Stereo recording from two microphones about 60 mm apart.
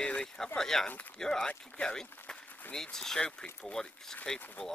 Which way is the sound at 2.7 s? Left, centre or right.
Centre.